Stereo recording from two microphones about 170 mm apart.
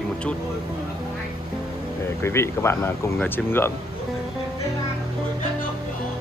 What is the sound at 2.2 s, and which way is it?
Speech, 15° left (ahead or behind).